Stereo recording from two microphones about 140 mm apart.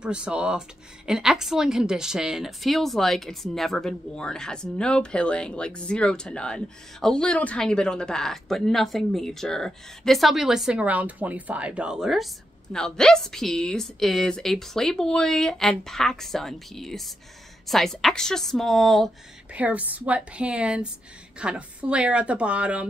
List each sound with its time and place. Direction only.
0.0 s speech: 5° right (ahead or behind)
19.5 s a woman's voice: 10° right (ahead or behind)